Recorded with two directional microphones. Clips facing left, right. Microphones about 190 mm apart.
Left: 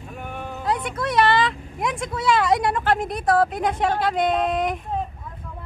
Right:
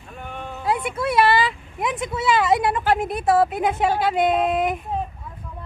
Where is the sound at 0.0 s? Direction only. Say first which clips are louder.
Left 1 dB; 5° left (ahead or behind).